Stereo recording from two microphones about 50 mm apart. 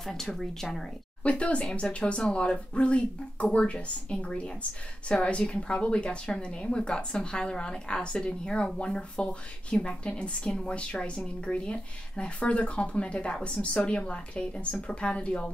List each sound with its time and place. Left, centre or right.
0.0 s speech: centre
1.2 s speech: left